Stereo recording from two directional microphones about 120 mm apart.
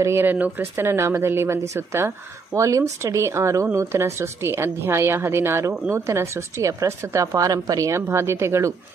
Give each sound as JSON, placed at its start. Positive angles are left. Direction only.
{"t": 0.0, "sound": "a woman's voice", "side_deg": -20}